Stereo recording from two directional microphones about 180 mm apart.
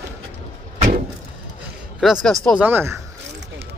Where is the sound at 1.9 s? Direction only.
Centre (ahead or behind).